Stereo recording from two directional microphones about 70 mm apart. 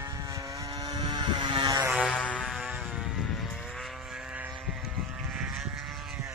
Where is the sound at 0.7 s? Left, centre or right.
Right.